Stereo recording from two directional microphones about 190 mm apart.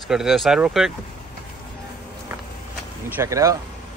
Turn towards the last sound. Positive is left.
turn(degrees=-15)  # may be behind; listen again after turning